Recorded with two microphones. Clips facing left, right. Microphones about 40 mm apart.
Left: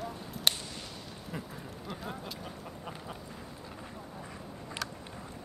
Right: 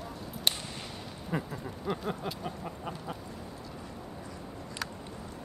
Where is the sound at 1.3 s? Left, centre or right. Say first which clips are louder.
Right 8 dB; centre.